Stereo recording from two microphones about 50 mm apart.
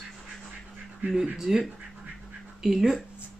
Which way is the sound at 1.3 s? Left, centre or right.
Centre.